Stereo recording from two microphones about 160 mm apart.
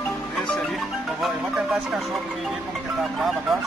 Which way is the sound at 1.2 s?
Centre (ahead or behind).